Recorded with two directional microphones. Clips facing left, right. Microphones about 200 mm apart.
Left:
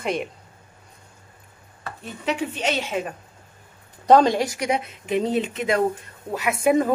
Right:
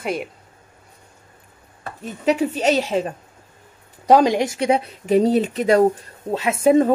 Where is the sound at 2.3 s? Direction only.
40° right (ahead or behind).